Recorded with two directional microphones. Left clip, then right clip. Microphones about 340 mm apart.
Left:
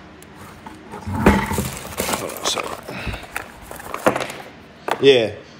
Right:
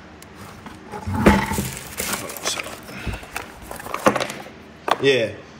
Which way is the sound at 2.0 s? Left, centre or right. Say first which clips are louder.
Left 4 dB; centre.